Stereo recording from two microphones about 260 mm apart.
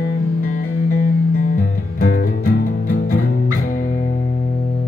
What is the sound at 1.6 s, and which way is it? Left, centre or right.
Music, left.